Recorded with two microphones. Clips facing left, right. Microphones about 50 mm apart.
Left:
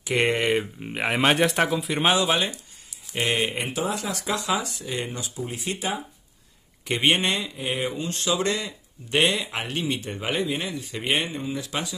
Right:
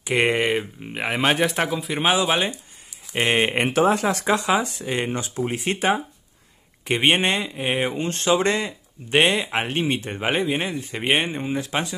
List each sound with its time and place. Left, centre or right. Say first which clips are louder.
0.2 s speech: right 3 dB; right
0.5 s speech: even; centre
3.2 s a man's voice: right 5 dB; right
3.6 s speech: right 9 dB; right
3.9 s a man's voice: right 7 dB; right